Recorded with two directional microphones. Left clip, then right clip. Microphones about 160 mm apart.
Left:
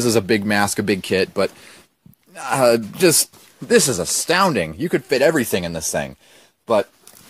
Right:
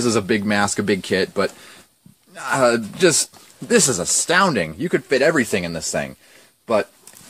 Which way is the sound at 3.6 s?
40° left (ahead or behind).